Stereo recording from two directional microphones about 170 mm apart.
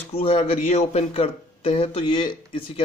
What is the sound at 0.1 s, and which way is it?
Speech, 35° left (ahead or behind).